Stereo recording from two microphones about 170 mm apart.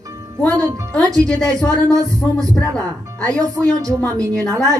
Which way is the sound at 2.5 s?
5° left (ahead or behind).